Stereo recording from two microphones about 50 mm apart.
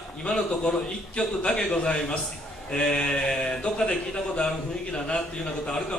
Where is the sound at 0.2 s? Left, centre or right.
Centre.